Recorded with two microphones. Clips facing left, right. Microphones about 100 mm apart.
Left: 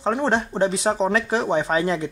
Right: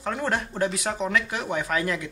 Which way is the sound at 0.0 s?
25° left (ahead or behind).